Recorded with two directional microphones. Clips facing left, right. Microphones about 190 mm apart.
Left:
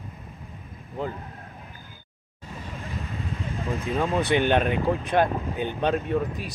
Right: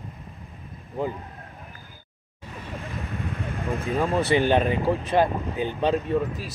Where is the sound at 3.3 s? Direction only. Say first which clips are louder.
Right 1 dB; 55° right (ahead or behind).